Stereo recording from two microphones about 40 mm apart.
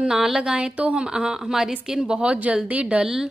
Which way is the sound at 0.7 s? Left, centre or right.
Right.